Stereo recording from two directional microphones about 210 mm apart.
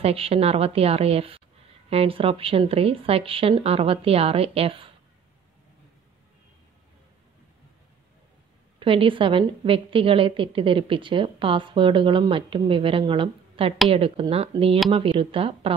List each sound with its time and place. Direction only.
0.0 s a woman's voice: 25° right (ahead or behind)
8.7 s a woman's voice: 25° right (ahead or behind)